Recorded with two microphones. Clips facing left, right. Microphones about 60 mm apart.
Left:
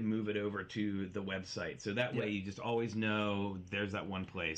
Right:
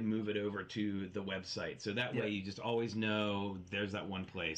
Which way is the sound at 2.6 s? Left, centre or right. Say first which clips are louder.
Even; centre.